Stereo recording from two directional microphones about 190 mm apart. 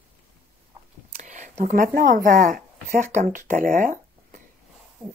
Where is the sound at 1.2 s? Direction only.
40° right (ahead or behind).